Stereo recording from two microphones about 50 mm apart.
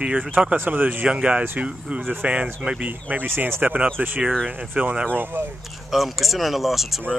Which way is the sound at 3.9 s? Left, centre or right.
Right.